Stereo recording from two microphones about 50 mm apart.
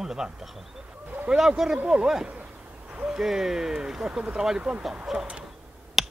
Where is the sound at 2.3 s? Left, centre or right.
Right.